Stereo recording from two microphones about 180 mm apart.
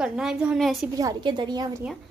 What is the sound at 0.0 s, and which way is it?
Speech, 5° right (ahead or behind).